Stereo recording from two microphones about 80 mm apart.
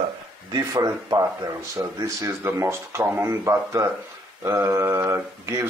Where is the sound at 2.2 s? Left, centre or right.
Right.